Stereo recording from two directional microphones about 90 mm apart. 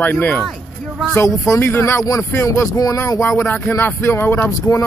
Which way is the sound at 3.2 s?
25° left (ahead or behind).